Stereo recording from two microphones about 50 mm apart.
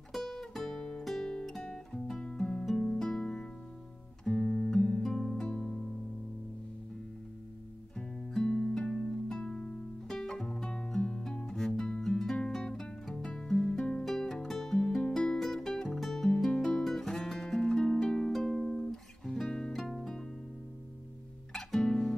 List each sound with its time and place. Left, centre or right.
0.1 s music: centre
4.2 s guitar: centre
5.0 s music: centre
8.4 s music: centre
16.4 s music: centre
21.5 s music: centre